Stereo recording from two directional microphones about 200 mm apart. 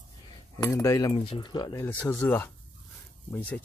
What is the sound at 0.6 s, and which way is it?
Speech, 15° left (ahead or behind).